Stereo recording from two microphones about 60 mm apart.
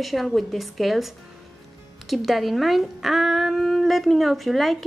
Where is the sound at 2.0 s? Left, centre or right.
Centre.